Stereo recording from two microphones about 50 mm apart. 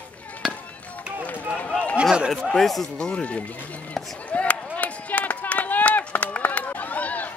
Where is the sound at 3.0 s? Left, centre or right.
Left.